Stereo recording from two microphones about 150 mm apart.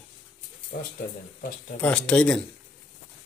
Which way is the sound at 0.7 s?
90° left.